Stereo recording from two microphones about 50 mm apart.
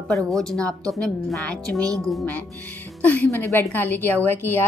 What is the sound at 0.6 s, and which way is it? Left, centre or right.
Speech, left.